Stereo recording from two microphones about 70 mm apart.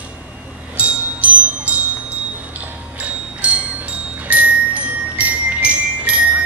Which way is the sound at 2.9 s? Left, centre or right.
Centre.